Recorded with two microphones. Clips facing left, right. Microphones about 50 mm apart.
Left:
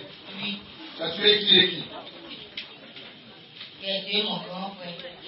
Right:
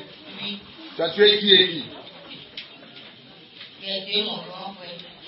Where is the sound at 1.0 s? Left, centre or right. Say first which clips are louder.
Right 7 dB; right.